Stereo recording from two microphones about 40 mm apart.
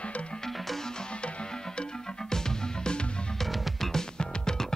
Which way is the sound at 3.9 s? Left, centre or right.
Centre.